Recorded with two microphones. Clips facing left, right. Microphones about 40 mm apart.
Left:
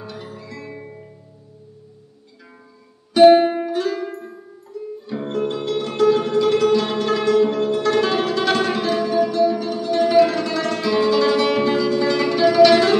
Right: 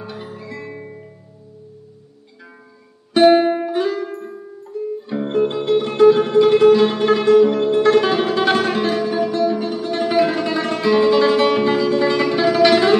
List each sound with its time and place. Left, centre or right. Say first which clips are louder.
0.0 s music: right 2 dB; centre
3.1 s music: left 1 dB; centre
4.0 s music: right 2 dB; centre